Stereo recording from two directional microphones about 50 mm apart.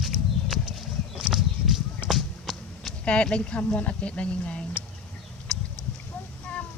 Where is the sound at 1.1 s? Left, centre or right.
Centre.